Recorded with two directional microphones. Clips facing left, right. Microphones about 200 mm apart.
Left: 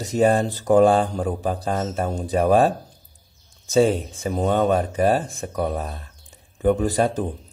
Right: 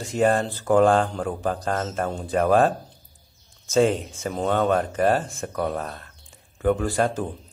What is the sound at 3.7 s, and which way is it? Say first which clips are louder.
Speech: left 2 dB; 10° left (ahead or behind).